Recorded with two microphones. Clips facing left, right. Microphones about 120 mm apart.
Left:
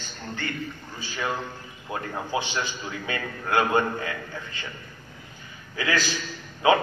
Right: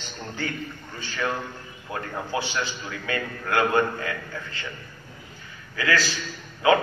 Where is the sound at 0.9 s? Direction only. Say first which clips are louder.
Right 1 dB; 10° left (ahead or behind).